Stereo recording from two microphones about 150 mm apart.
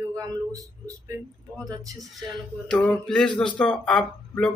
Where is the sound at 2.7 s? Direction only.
5° left (ahead or behind).